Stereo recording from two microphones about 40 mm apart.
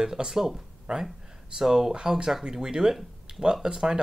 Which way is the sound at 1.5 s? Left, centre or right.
Centre.